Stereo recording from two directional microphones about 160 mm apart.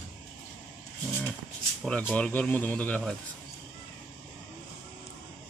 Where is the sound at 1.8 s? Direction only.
Centre (ahead or behind).